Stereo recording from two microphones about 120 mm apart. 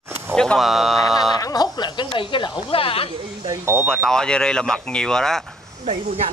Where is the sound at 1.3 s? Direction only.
35° left (ahead or behind).